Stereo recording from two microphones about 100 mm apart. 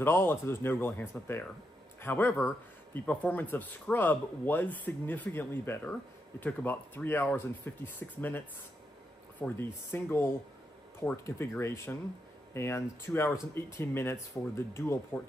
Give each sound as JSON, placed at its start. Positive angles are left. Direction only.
{"t": 0.0, "sound": "a man's voice", "side_deg": 25}
{"t": 9.6, "sound": "speech", "side_deg": 25}